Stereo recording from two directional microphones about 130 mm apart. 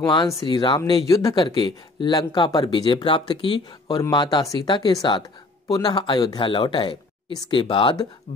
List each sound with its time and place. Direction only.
0.0 s speech: 35° left (ahead or behind)